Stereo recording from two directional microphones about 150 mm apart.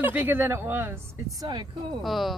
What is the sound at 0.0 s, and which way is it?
Speech, 10° right (ahead or behind).